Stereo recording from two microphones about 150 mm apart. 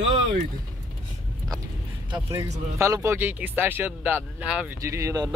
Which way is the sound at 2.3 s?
20° right (ahead or behind).